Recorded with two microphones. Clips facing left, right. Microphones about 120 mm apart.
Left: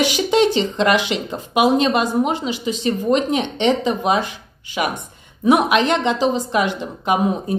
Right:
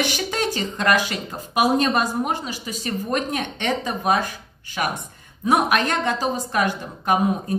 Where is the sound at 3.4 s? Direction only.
45° right (ahead or behind).